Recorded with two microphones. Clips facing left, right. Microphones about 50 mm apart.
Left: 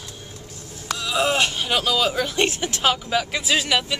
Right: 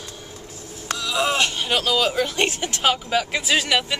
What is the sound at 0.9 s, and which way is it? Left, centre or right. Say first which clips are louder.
Speech: left 1 dB; centre.